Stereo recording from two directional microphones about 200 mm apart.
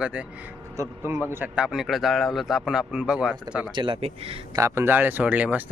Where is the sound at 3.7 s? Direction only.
25° right (ahead or behind).